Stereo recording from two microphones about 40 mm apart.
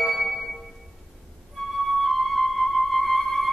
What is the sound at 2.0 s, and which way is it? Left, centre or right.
Music, centre.